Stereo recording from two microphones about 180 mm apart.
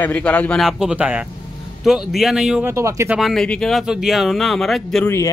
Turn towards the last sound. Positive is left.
turn(degrees=0)  # may be behind; listen again after turning